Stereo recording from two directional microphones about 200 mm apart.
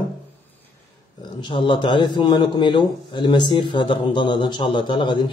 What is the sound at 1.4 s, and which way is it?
A man's voice, 25° left (ahead or behind).